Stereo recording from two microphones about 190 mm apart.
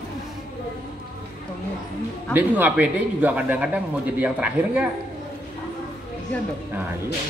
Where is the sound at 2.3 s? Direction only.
10° right (ahead or behind).